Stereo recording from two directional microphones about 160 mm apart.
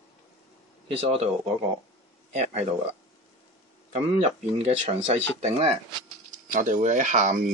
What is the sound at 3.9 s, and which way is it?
Speech, 40° right (ahead or behind).